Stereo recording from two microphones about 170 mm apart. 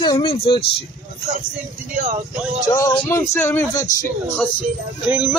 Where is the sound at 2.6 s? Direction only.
20° left (ahead or behind).